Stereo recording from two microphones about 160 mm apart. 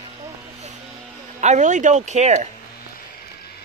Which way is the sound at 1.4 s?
50° right (ahead or behind).